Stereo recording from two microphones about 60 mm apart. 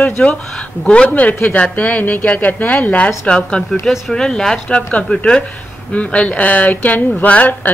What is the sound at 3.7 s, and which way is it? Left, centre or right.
A woman's voice, centre.